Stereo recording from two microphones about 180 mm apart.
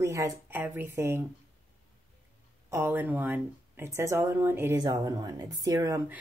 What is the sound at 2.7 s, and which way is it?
A woman's voice, 10° right (ahead or behind).